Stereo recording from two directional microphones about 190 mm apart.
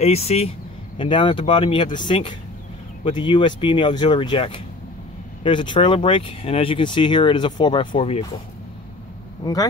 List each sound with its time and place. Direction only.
0.0 s speech: 35° left (ahead or behind)
9.4 s speech: 20° left (ahead or behind)